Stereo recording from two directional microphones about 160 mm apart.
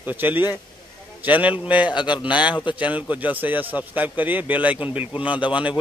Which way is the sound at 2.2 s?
10° right (ahead or behind).